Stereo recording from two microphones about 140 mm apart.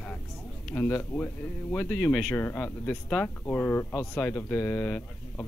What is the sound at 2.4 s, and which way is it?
Speech, 15° left (ahead or behind).